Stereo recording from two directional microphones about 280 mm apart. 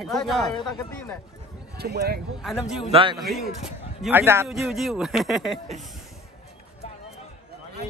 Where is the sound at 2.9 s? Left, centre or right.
Centre.